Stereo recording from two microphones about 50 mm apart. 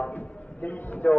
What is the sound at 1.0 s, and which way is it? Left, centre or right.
Speech, left.